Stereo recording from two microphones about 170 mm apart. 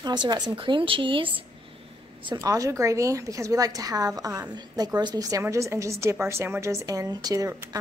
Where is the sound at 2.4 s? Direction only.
20° right (ahead or behind).